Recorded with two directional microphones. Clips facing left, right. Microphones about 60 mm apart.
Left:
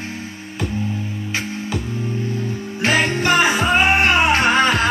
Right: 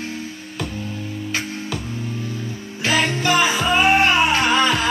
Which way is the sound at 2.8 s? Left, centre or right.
Left.